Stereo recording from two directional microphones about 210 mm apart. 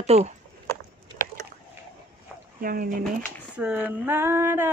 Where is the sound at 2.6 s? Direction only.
45° right (ahead or behind).